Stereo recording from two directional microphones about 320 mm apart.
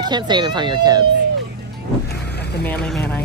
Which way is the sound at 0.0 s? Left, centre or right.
Centre.